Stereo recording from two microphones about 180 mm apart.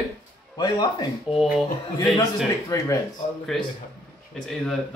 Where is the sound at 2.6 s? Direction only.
15° left (ahead or behind).